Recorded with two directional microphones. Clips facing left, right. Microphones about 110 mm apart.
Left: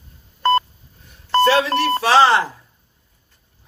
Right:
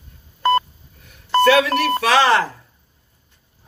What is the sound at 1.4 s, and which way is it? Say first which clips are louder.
Speech: right 1 dB; 30° left (ahead or behind).